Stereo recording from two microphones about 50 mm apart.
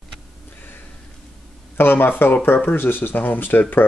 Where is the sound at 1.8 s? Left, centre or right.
Left.